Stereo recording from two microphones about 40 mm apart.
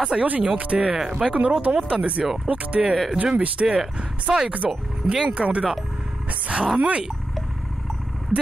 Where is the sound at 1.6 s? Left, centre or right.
Right.